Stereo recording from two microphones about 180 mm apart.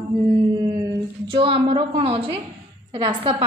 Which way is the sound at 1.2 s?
30° right (ahead or behind).